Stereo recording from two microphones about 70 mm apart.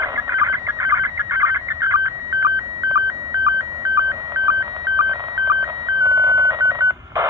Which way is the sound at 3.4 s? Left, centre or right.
Right.